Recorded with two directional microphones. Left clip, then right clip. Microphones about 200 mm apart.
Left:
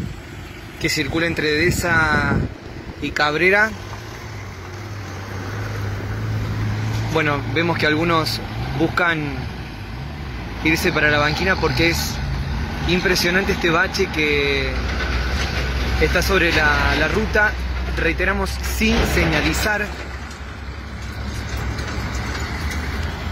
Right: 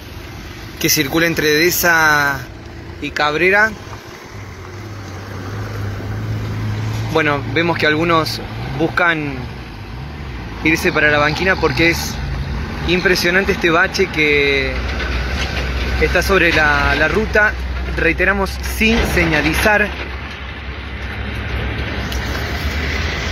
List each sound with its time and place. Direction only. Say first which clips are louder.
0.8 s speech: right 5 dB; centre (ahead or behind)
7.2 s speech: right 4 dB; 10° right (ahead or behind)
10.6 s speech: right 4 dB; centre (ahead or behind)
14.9 s vehicle: right 2 dB; 40° left (ahead or behind)
16.1 s speech: right 5 dB; 10° right (ahead or behind)
19.0 s speech: right 4 dB; 40° left (ahead or behind)